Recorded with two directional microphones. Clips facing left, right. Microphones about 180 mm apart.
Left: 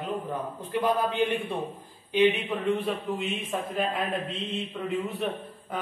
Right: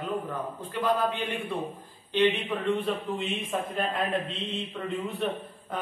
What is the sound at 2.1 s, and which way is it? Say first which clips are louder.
A man's voice: left 2 dB; 10° left (ahead or behind).